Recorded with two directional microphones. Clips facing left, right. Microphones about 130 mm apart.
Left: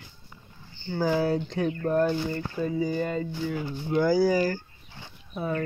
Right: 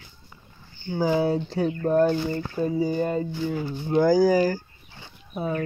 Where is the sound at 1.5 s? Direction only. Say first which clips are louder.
Right 5 dB; 30° right (ahead or behind).